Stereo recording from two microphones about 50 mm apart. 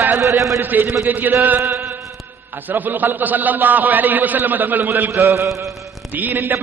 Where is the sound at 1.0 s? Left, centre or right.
Right.